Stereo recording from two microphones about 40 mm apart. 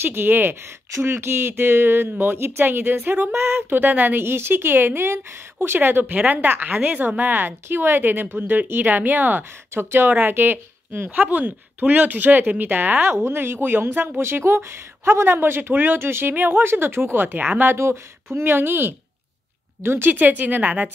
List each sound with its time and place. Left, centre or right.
0.0 s speech: right
4.2 s speech: right
5.8 s speech: right
6.1 s speech: right
7.6 s speech: right
9.4 s speech: right
11.1 s speech: right
13.1 s speech: right
15.7 s speech: right
18.3 s speech: right
20.1 s speech: right